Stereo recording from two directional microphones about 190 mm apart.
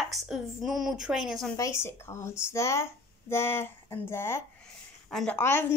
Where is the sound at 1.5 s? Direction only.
15° left (ahead or behind).